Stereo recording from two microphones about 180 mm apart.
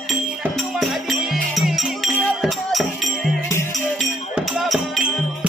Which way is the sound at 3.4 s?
20° left (ahead or behind).